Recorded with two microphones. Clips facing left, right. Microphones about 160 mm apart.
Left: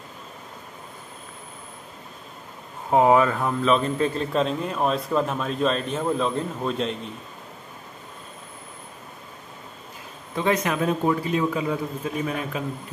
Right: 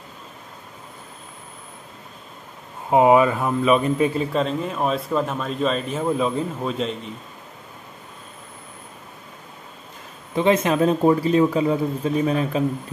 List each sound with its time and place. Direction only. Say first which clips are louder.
2.9 s a man's voice: right 3 dB; 15° right (ahead or behind)
10.3 s a man's voice: right 5 dB; 25° right (ahead or behind)